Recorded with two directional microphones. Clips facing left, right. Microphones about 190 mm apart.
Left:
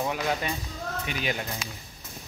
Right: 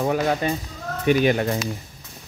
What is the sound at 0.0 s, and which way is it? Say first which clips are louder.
Speech: right 7 dB; 45° right (ahead or behind).